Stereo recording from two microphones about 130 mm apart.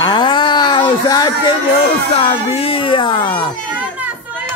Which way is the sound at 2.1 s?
45° left (ahead or behind).